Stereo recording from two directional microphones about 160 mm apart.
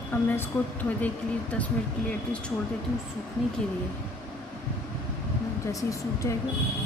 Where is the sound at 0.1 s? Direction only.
10° left (ahead or behind).